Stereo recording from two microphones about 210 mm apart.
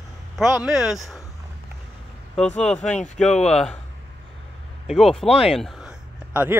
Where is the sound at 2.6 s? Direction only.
5° left (ahead or behind).